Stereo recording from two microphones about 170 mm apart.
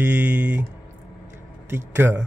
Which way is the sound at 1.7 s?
15° right (ahead or behind).